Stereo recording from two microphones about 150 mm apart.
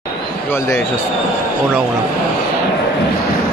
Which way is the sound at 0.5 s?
15° left (ahead or behind).